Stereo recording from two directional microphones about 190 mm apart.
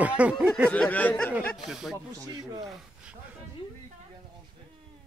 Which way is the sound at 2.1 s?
20° right (ahead or behind).